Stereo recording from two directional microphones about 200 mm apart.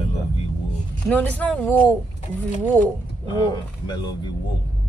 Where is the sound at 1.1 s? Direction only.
10° left (ahead or behind).